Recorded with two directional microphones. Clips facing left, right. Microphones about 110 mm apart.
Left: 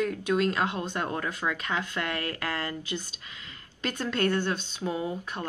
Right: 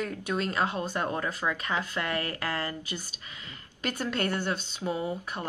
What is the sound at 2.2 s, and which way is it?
Speech, 30° right (ahead or behind).